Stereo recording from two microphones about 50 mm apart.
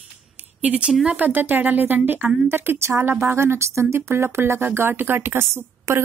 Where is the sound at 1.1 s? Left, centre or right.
Right.